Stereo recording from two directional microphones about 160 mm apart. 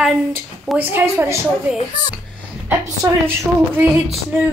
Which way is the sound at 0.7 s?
15° right (ahead or behind).